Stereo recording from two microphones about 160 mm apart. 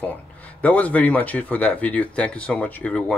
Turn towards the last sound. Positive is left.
turn(degrees=10)  # may be behind; listen again after turning